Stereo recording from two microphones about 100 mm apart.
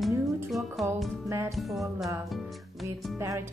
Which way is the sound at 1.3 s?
30° right (ahead or behind).